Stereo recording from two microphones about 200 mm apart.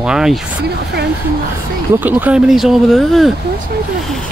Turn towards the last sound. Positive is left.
turn(degrees=0)  # may be behind; listen again after turning